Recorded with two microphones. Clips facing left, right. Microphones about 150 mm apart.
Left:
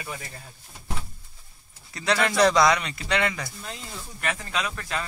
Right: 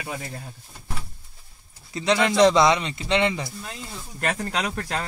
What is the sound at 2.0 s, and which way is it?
Speech, 20° right (ahead or behind).